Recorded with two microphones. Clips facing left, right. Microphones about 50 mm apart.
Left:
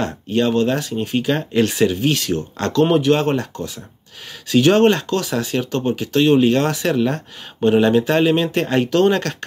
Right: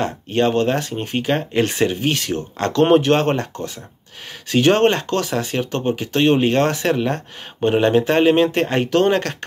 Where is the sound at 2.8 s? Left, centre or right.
Right.